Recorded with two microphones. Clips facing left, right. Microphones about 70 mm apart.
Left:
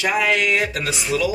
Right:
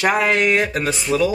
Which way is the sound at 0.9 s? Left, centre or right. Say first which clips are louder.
Right 2 dB; centre.